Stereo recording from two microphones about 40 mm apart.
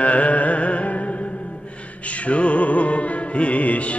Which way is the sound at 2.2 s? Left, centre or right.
Left.